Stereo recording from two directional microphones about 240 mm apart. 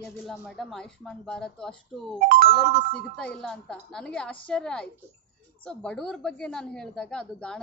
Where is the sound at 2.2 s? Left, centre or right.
Right.